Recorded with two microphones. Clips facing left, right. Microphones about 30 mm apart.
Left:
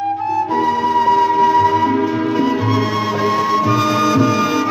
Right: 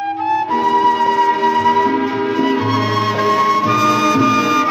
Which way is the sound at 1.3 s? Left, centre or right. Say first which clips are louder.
Left 1 dB; right.